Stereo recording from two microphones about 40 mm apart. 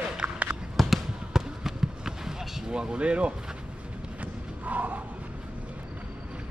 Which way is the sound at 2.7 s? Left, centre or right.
Right.